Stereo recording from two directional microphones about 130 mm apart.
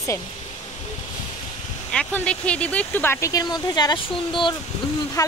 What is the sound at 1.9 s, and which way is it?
Speech, 10° left (ahead or behind).